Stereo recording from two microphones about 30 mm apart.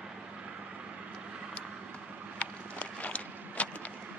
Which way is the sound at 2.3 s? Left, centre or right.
Left.